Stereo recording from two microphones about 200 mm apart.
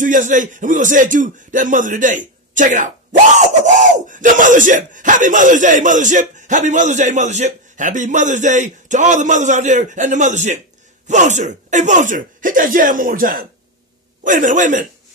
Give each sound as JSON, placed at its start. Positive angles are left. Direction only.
{"t": 0.0, "sound": "a man's voice", "side_deg": -40}